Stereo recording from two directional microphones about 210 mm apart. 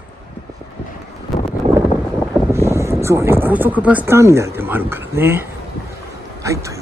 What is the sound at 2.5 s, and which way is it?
Speech, 15° right (ahead or behind).